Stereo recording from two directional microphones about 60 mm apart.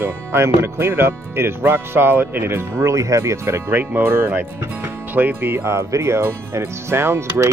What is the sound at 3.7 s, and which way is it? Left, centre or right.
Speech, right.